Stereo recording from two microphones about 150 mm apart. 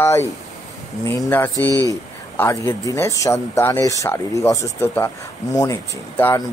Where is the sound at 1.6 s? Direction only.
25° right (ahead or behind).